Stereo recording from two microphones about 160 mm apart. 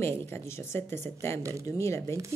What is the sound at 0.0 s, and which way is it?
Speech, 15° left (ahead or behind).